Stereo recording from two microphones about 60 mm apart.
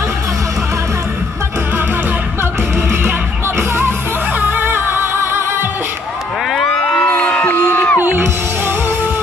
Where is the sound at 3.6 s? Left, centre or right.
Right.